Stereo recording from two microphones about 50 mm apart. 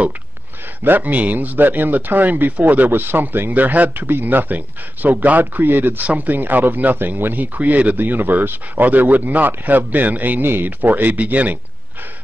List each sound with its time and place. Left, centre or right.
0.8 s speech: right
2.9 s speech: right